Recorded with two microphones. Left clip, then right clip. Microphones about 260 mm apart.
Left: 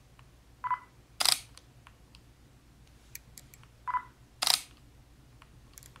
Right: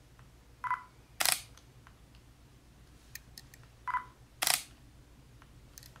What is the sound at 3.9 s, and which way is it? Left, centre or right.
Camera, centre.